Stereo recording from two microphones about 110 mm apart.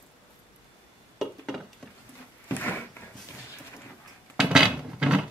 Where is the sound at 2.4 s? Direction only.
20° left (ahead or behind).